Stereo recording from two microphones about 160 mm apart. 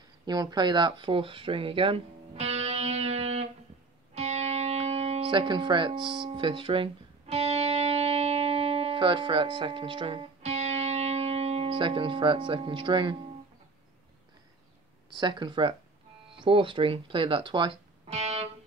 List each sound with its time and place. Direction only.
0.2 s speech: 25° right (ahead or behind)
4.1 s music: 45° right (ahead or behind)
15.1 s speech: 25° right (ahead or behind)